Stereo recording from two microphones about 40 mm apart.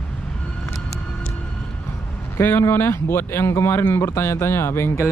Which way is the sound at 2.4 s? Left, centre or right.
Left.